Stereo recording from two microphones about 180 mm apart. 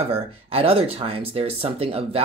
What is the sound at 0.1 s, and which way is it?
Speech, 30° right (ahead or behind).